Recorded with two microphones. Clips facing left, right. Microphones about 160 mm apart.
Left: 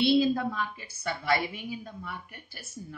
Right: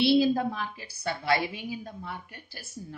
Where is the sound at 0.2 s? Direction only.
35° right (ahead or behind).